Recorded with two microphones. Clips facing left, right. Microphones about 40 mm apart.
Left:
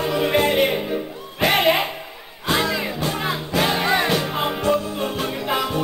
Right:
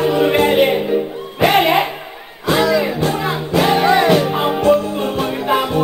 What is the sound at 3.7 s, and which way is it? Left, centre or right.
Music, right.